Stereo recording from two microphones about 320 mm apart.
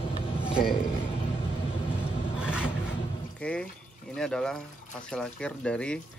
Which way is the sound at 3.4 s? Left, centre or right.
Centre.